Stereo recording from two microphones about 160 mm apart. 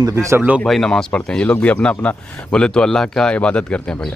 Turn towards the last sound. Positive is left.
turn(degrees=5)  # may be behind; listen again after turning